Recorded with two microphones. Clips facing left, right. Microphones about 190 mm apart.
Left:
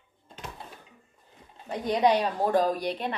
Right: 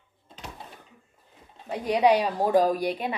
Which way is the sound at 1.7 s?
5° right (ahead or behind).